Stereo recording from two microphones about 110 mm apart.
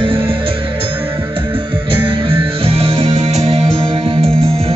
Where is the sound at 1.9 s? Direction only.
50° right (ahead or behind); by 3.3 s 65° right (ahead or behind).